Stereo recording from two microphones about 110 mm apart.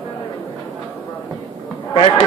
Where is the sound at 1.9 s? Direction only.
55° left (ahead or behind).